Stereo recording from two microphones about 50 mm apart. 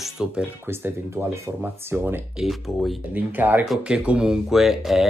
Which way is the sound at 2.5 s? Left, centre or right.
Centre.